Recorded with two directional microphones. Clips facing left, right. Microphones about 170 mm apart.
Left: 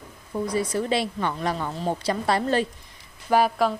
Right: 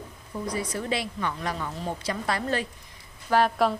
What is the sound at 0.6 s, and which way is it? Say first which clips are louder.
Speech: left 6 dB; 30° left (ahead or behind).